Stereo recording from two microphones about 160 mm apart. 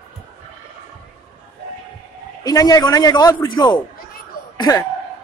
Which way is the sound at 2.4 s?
25° left (ahead or behind).